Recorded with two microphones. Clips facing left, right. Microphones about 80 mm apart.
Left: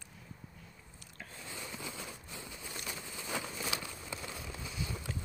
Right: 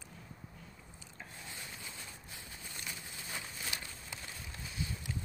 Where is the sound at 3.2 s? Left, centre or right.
Left.